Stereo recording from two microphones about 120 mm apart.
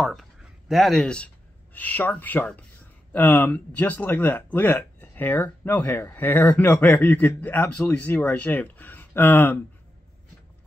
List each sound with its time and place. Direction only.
0.0 s speech: centre (ahead or behind)